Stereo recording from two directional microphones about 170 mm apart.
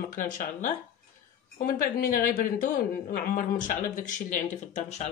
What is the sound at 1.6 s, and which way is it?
Speech, 55° left (ahead or behind).